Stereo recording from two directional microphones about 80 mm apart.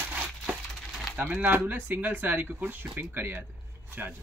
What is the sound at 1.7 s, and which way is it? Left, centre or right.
Speech, right.